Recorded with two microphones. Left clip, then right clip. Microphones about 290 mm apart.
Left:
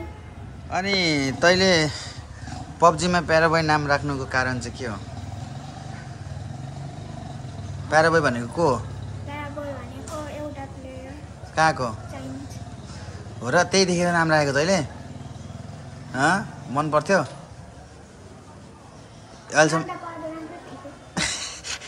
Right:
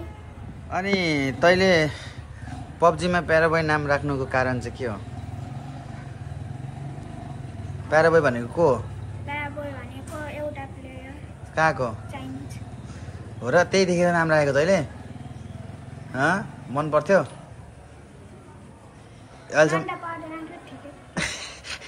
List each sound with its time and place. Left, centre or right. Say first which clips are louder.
0.7 s a man's voice: left 2 dB; centre
7.9 s a man's voice: even; centre
11.5 s a man's voice: left 1 dB; centre
13.4 s a man's voice: even; centre
16.1 s a man's voice: left 2 dB; centre
19.5 s a man's voice: even; centre
21.1 s a sound: left 2 dB; centre